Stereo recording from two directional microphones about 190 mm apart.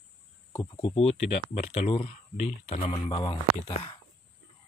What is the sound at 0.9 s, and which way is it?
Speech, 35° left (ahead or behind).